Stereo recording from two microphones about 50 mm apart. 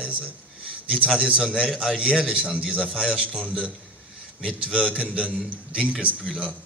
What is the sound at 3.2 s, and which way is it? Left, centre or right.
Speech, left.